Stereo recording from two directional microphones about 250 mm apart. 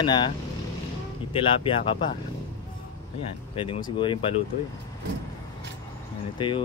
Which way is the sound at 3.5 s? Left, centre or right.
Left.